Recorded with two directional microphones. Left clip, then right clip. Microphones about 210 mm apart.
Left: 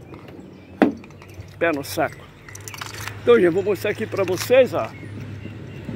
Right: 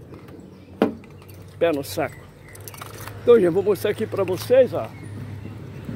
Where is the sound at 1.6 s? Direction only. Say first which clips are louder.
Even; 15° right (ahead or behind).